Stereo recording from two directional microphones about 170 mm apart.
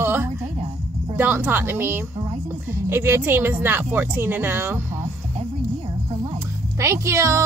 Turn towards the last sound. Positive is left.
turn(degrees=-15)  # may be behind; listen again after turning